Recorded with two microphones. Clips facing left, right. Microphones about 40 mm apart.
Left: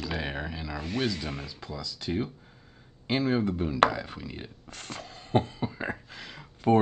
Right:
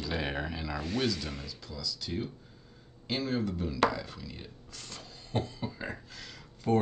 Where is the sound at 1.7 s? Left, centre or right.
Left.